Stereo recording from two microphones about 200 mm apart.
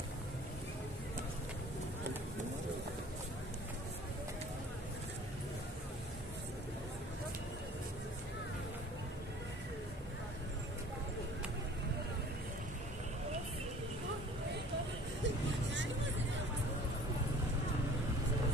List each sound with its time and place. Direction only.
15.2 s vehicle: 65° right (ahead or behind)